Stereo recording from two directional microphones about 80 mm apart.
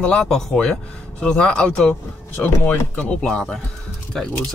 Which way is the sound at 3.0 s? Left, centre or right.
Centre.